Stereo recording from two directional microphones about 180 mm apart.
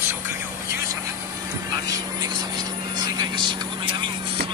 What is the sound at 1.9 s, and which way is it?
Speech, 20° right (ahead or behind).